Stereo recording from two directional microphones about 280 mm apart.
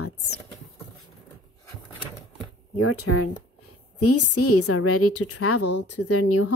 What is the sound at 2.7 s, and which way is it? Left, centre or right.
A woman's voice, left.